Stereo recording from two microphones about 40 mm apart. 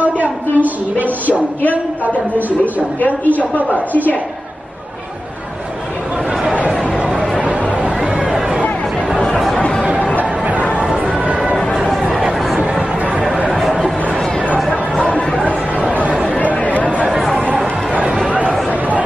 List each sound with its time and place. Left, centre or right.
0.0 s speech: right
2.3 s a woman's voice: left
3.3 s a woman's voice: right
8.0 s a sound: right
10.4 s a sound: right
11.7 s chatter: centre
13.5 s a sound: centre
14.7 s chatter: left
16.6 s chatter: left
17.1 s chatter: centre
18.7 s chatter: right